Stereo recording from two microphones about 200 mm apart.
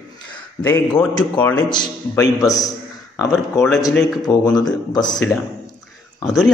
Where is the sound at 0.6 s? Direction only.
10° left (ahead or behind).